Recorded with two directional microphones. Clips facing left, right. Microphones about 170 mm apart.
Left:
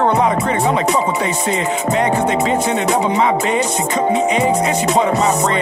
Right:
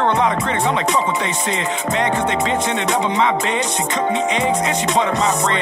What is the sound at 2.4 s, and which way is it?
Music, 5° left (ahead or behind).